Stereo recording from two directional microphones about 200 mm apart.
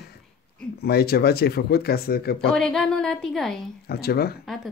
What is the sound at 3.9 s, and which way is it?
Speech, 50° left (ahead or behind).